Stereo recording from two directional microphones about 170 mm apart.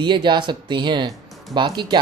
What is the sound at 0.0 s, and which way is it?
Speech, 25° right (ahead or behind).